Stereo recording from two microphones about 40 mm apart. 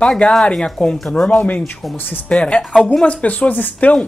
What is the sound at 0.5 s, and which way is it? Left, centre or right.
Speech, centre.